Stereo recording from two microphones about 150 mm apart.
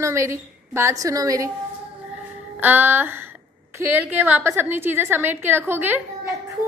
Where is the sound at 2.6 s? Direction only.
10° right (ahead or behind).